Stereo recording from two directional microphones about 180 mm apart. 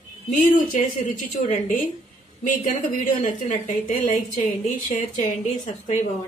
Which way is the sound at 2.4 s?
50° left (ahead or behind).